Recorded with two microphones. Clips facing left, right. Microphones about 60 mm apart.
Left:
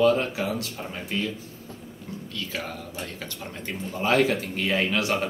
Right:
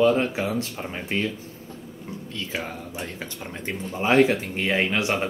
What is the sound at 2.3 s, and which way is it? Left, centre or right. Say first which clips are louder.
Speech: right 2 dB; right.